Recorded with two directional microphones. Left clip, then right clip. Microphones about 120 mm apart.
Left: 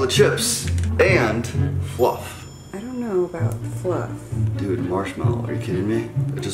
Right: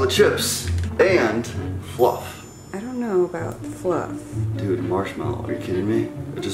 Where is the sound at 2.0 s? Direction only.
15° right (ahead or behind).